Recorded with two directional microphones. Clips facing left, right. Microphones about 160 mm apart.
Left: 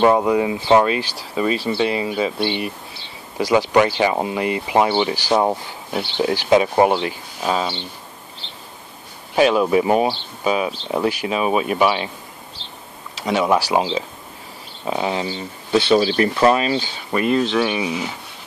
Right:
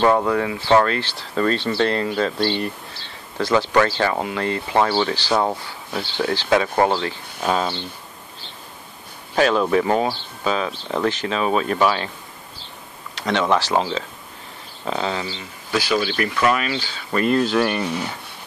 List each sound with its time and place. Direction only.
0.0 s speech: 15° left (ahead or behind)
7.3 s speech: 5° left (ahead or behind)
9.3 s speech: 10° left (ahead or behind)
12.6 s a sound: 25° left (ahead or behind)
13.1 s speech: 10° left (ahead or behind)
14.9 s speech: 15° left (ahead or behind)
15.7 s speech: 30° left (ahead or behind)
16.8 s speech: 10° left (ahead or behind)